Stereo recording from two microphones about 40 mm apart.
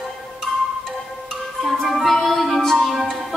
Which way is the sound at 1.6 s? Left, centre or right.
Centre.